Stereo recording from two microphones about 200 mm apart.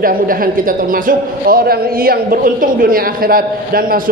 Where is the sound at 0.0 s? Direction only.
45° right (ahead or behind).